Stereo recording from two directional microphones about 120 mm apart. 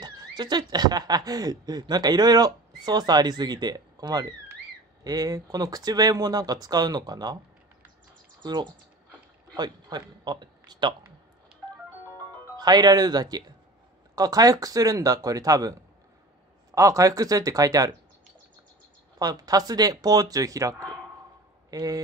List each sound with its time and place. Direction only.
0.0 s speech: 35° right (ahead or behind)
8.4 s speech: 35° right (ahead or behind)
12.5 s speech: 35° right (ahead or behind)
16.7 s speech: 25° right (ahead or behind)
19.1 s speech: 30° right (ahead or behind)